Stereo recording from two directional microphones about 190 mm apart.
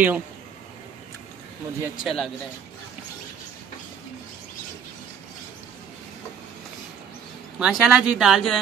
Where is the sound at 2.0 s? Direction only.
Centre (ahead or behind).